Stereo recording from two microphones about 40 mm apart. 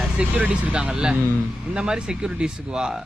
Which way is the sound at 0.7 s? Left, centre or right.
Right.